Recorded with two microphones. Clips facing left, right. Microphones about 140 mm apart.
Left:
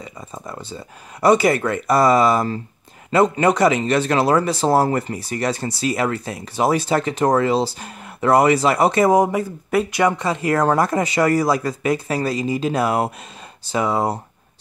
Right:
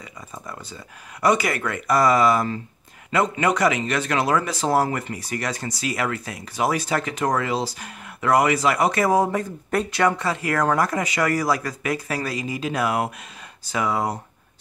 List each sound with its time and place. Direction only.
0.0 s speech: 30° left (ahead or behind); by 9.9 s 5° left (ahead or behind)
9.9 s speech: 20° left (ahead or behind)